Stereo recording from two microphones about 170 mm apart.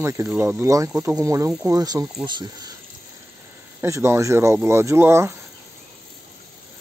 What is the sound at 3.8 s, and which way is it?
Speech, 15° right (ahead or behind).